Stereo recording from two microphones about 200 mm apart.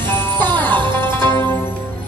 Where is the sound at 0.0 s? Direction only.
10° left (ahead or behind).